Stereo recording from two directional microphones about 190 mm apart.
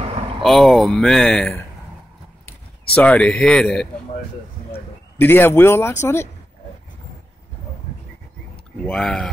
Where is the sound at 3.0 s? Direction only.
5° left (ahead or behind).